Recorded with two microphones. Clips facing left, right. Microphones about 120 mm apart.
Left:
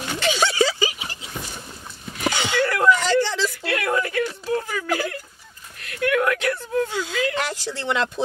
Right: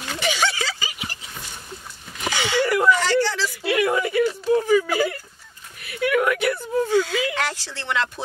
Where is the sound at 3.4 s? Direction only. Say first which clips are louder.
Right 3 dB; 10° right (ahead or behind).